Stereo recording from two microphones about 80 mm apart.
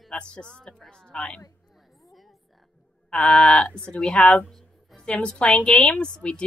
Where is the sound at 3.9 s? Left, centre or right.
Centre.